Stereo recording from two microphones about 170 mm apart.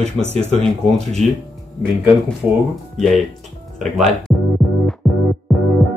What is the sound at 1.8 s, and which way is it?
Speech, 5° left (ahead or behind).